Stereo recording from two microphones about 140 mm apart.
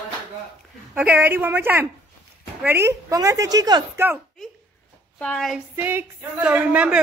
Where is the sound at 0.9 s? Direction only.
10° right (ahead or behind); by 3.8 s 25° right (ahead or behind).